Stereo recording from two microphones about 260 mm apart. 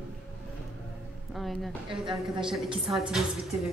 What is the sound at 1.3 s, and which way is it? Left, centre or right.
A woman's voice, centre.